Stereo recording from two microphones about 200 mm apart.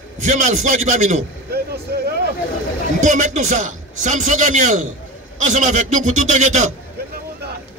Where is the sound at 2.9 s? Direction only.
35° right (ahead or behind).